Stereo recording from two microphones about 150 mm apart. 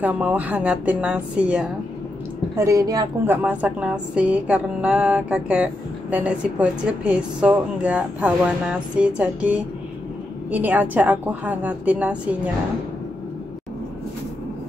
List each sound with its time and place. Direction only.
0.0 s speech: 10° right (ahead or behind)
2.5 s a woman's voice: 20° right (ahead or behind)
3.3 s speech: 10° right (ahead or behind)